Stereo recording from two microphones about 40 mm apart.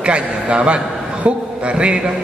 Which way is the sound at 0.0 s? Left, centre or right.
Right.